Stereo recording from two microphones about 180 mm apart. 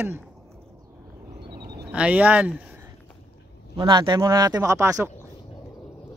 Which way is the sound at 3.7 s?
25° right (ahead or behind).